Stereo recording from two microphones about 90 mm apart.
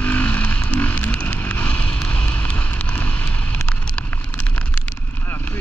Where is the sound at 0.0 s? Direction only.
20° left (ahead or behind).